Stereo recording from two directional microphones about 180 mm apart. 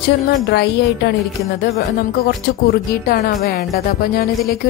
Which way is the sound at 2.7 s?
55° left (ahead or behind).